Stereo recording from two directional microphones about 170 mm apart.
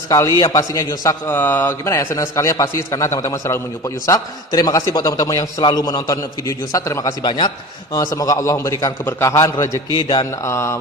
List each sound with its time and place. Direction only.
0.1 s a man's voice: 20° left (ahead or behind)
9.9 s mantra: 25° left (ahead or behind)